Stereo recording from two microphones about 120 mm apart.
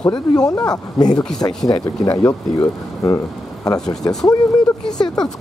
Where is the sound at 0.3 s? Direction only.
30° left (ahead or behind).